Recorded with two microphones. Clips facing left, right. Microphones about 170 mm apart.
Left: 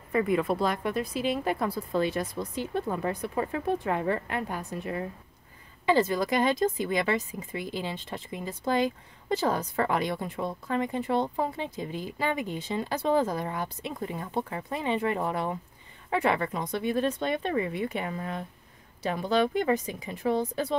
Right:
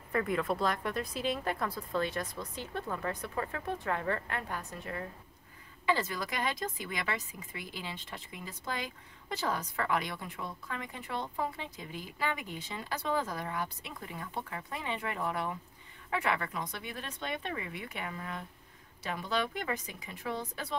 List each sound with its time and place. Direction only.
0.1 s speech: 10° left (ahead or behind); by 20.7 s 30° left (ahead or behind)